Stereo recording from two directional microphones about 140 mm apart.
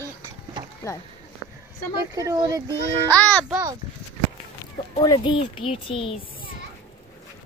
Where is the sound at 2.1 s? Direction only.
25° right (ahead or behind).